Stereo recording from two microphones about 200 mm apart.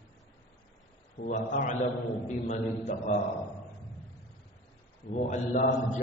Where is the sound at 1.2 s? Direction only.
40° left (ahead or behind).